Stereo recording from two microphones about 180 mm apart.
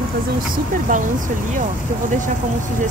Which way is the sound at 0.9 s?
45° right (ahead or behind).